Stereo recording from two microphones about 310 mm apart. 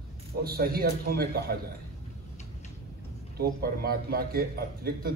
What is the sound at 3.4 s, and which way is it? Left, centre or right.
A man's voice, right.